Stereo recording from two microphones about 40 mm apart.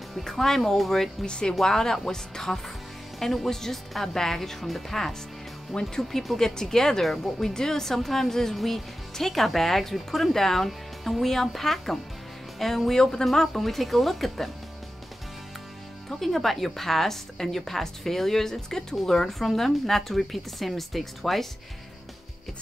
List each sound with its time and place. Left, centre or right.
0.2 s speech: centre
1.2 s speech: left; by 14.5 s centre
16.1 s speech: centre